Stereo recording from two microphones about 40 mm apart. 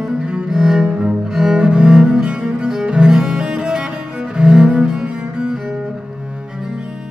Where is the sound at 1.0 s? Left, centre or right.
Centre.